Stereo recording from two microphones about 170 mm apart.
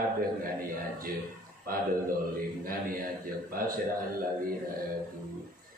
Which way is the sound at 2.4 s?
55° right (ahead or behind).